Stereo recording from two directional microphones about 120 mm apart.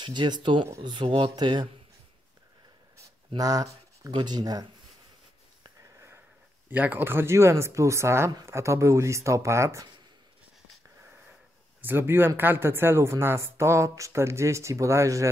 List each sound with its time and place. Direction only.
0.0 s speech: 40° right (ahead or behind)
3.3 s speech: 30° right (ahead or behind)
5.8 s sniff: 20° right (ahead or behind)
6.7 s speech: 15° right (ahead or behind)
11.8 s speech: 20° right (ahead or behind)